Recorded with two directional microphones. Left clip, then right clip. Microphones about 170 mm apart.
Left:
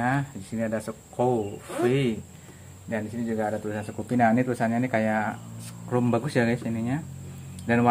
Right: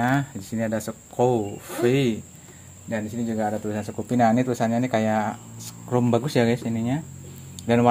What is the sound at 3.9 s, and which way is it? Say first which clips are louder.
Speech: right 2 dB; 35° right (ahead or behind).